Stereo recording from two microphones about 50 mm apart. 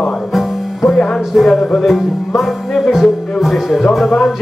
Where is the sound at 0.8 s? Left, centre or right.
Left.